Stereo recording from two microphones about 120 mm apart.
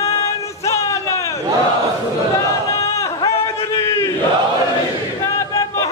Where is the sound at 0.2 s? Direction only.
25° left (ahead or behind).